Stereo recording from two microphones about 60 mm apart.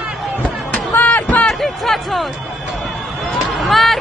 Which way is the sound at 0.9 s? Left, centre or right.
Left.